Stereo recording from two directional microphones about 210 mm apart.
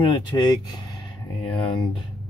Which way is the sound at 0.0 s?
20° left (ahead or behind).